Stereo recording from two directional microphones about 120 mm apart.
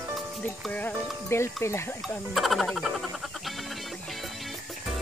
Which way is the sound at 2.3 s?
Centre (ahead or behind).